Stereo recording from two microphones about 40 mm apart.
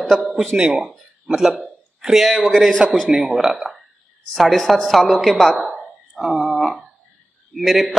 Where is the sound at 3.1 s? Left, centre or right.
Centre.